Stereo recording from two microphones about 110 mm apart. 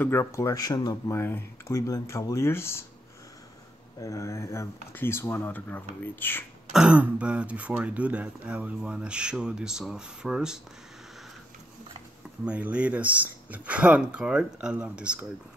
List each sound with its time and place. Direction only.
0.0 s speech: 20° left (ahead or behind)
0.6 s speech: 35° left (ahead or behind)
1.1 s speech: 20° left (ahead or behind)
4.0 s speech: 30° left (ahead or behind)
6.7 s speech: 10° right (ahead or behind)
12.4 s speech: 10° right (ahead or behind)